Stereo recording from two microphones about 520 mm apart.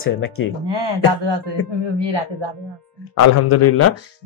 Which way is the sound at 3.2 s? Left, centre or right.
Left.